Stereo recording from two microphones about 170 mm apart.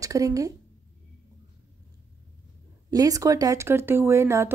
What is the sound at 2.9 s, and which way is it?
Speech, 20° right (ahead or behind).